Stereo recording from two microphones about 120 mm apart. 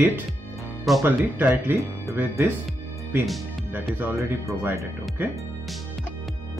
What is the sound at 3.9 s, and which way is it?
Speech, 20° right (ahead or behind).